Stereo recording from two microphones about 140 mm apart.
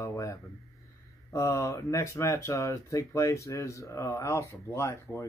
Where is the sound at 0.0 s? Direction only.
20° left (ahead or behind).